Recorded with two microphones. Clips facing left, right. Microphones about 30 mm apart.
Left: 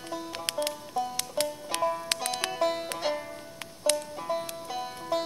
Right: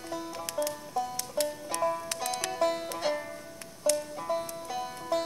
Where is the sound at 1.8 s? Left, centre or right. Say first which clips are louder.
Left 1 dB; centre.